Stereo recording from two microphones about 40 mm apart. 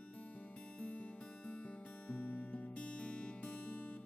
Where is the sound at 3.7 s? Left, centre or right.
Left.